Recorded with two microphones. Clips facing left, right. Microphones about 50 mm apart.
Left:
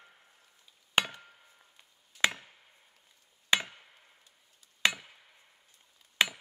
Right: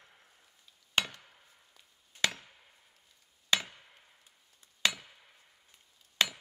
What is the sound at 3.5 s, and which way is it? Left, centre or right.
Chop, left.